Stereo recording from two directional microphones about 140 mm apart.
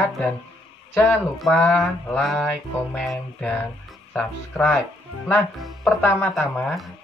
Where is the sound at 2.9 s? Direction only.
Centre (ahead or behind).